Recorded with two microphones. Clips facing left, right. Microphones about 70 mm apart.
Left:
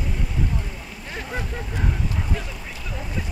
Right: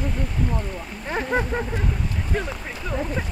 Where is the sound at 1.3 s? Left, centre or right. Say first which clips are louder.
Right 7 dB; right.